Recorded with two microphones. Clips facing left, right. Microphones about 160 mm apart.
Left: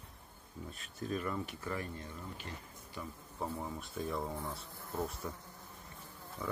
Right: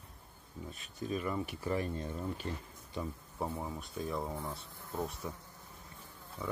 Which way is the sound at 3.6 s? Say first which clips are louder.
Even; centre (ahead or behind).